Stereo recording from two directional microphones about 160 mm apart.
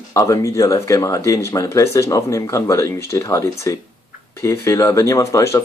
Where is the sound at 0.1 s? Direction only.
20° left (ahead or behind).